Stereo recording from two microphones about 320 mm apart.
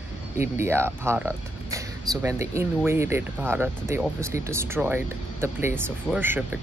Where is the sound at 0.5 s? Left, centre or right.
Centre.